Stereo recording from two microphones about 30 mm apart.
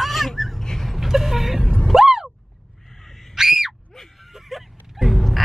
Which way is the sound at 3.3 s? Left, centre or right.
Centre.